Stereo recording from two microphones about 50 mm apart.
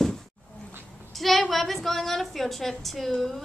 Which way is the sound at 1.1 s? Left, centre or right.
Centre.